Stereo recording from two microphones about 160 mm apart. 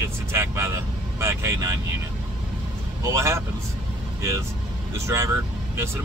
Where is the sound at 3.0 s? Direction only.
20° right (ahead or behind).